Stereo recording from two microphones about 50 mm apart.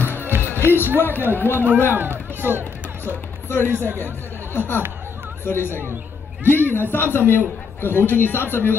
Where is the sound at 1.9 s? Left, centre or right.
Right.